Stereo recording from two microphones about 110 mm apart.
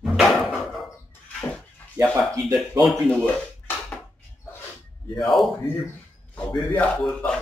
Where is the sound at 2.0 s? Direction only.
25° right (ahead or behind).